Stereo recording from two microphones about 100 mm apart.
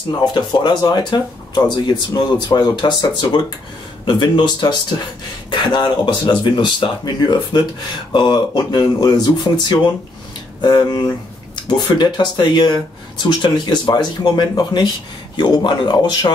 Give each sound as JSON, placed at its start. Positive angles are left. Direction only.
{"t": 0.2, "sound": "speech", "side_deg": 45}